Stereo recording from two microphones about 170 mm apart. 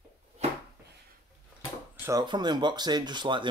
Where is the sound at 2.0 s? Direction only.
20° right (ahead or behind).